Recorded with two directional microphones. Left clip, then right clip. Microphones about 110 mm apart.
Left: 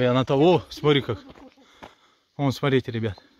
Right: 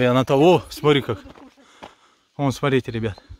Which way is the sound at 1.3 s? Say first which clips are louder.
Right 3 dB; 5° right (ahead or behind).